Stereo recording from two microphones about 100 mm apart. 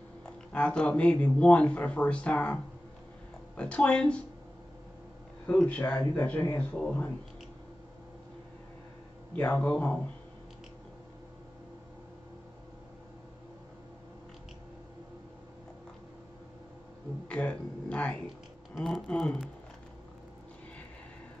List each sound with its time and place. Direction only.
0.2 s speech: 15° left (ahead or behind)
5.6 s speech: 15° left (ahead or behind)
9.3 s speech: 15° left (ahead or behind)
17.3 s speech: 10° left (ahead or behind)
18.8 s speech: centre (ahead or behind)